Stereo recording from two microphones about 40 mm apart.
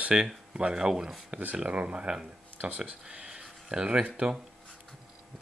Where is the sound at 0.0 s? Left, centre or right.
Right.